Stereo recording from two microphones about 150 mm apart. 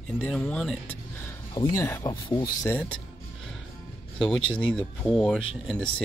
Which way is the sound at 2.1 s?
35° left (ahead or behind).